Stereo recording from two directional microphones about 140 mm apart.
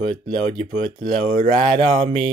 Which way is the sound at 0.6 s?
70° right (ahead or behind).